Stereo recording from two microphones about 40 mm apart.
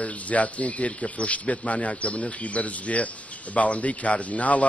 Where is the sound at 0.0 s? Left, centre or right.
Left.